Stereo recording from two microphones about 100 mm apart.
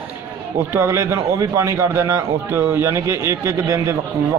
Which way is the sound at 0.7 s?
25° right (ahead or behind).